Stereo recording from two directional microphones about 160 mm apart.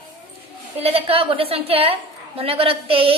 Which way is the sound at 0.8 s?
35° right (ahead or behind).